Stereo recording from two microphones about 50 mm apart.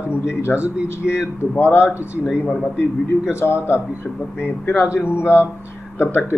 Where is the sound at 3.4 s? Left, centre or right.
Left.